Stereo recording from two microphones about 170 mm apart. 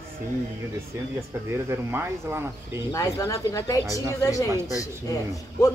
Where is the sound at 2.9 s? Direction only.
20° left (ahead or behind).